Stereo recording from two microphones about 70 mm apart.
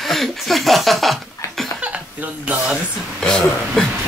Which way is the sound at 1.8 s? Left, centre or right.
Centre.